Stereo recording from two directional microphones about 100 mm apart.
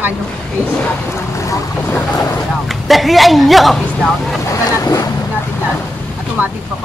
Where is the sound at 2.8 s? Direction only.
Centre (ahead or behind).